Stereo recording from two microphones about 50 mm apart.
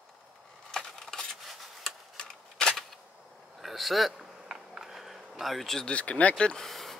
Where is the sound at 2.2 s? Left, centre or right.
Centre.